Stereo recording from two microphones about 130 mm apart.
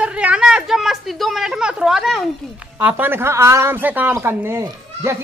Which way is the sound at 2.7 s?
15° right (ahead or behind).